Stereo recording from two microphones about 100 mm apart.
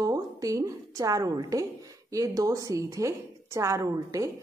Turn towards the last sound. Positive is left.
turn(degrees=-35)  # may be behind; listen again after turning